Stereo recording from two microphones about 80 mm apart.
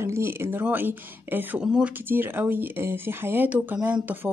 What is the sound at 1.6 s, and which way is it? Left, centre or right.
Speech, centre.